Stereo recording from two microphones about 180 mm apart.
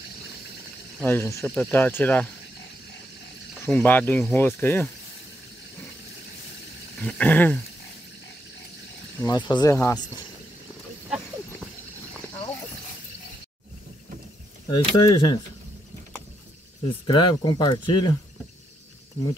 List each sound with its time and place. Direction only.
1.0 s speech: 15° left (ahead or behind)
3.6 s speech: 10° left (ahead or behind)
7.0 s speech: 5° left (ahead or behind)
9.2 s speech: 25° left (ahead or behind)
14.7 s speech: 25° left (ahead or behind)
17.0 s speech: 30° left (ahead or behind)